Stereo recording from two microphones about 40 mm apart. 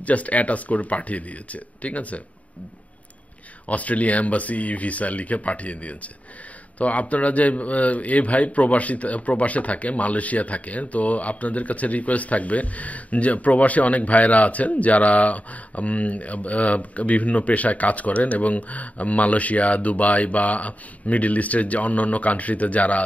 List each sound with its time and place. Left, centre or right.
0.0 s a man's voice: left
3.6 s a man's voice: left